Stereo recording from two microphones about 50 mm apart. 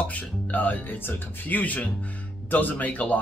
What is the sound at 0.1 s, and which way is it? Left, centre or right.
Speech, left.